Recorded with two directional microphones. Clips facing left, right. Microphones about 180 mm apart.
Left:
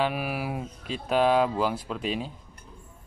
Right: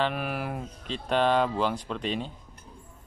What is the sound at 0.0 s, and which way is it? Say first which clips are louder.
Speech: left 1 dB; 5° left (ahead or behind).